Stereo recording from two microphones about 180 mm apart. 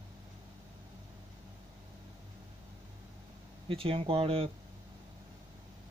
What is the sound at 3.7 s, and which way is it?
Speech, 30° right (ahead or behind).